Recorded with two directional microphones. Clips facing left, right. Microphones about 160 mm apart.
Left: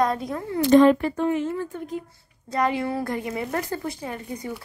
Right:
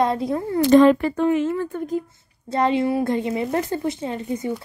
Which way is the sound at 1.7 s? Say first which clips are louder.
Right 6 dB; 40° right (ahead or behind).